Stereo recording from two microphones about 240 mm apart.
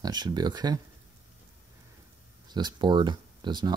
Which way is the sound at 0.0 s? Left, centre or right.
Centre.